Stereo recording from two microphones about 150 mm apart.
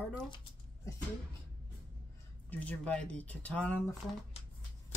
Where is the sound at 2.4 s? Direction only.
10° left (ahead or behind).